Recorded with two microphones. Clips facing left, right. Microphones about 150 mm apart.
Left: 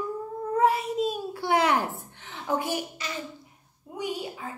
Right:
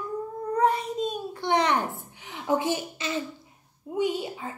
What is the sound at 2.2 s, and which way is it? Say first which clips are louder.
A woman's voice: right 3 dB; 20° right (ahead or behind).